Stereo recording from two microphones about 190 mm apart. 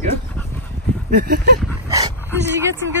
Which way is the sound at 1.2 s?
55° right (ahead or behind).